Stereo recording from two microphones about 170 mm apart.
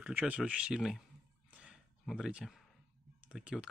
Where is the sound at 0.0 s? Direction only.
10° right (ahead or behind).